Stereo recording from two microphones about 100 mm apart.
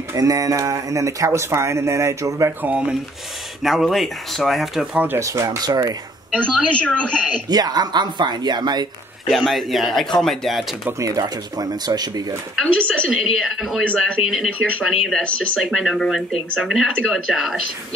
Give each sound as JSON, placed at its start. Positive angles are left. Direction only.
{"t": 0.1, "sound": "speech", "side_deg": -35}
{"t": 2.6, "sound": "speech", "side_deg": -10}
{"t": 5.2, "sound": "speech", "side_deg": -30}
{"t": 6.3, "sound": "speech", "side_deg": 10}
{"t": 7.4, "sound": "speech", "side_deg": -40}
{"t": 9.3, "sound": "speech", "side_deg": 0}
{"t": 10.9, "sound": "speech", "side_deg": -35}
{"t": 13.4, "sound": "speech", "side_deg": -5}